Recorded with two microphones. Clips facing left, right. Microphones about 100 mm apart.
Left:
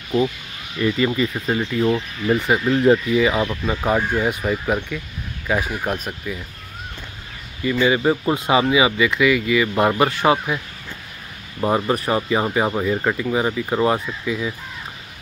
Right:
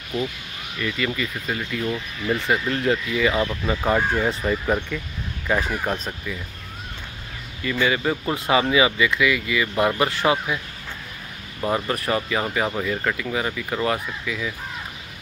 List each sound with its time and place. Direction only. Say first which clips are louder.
0.7 s speech: left 7 dB; 25° left (ahead or behind)
7.8 s speech: left 4 dB; 20° left (ahead or behind)
11.6 s speech: left 4 dB; 25° left (ahead or behind)